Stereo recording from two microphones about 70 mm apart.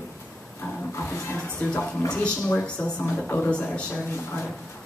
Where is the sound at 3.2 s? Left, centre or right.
Left.